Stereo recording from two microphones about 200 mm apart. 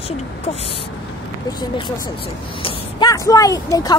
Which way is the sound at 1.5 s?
20° left (ahead or behind).